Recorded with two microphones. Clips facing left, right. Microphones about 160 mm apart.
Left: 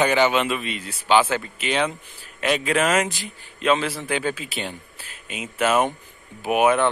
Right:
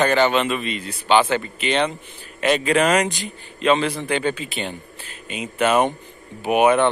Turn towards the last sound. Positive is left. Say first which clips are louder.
# right 2 dB
turn(degrees=0)  # may be behind; listen again after turning